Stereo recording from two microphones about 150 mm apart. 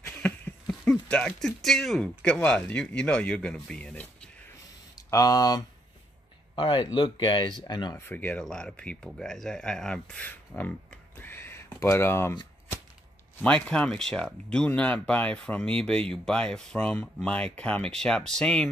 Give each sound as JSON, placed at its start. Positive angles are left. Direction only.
{"t": 0.0, "sound": "speech", "side_deg": 10}
{"t": 5.1, "sound": "speech", "side_deg": 25}
{"t": 8.0, "sound": "speech", "side_deg": 15}
{"t": 13.4, "sound": "speech", "side_deg": 5}